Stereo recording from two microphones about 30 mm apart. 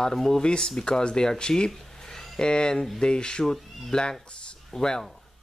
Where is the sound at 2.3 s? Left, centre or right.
Left.